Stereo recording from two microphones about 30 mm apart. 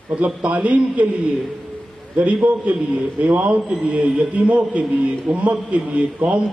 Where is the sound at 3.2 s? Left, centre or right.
Right.